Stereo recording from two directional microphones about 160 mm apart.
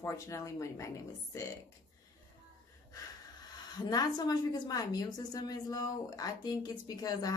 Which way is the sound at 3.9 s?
25° left (ahead or behind).